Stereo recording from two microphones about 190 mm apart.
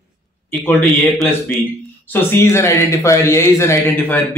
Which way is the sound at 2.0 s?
10° left (ahead or behind).